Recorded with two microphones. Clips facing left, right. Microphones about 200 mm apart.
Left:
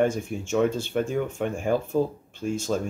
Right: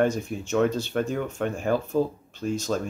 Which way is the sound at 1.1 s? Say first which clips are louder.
Left 1 dB; 10° left (ahead or behind).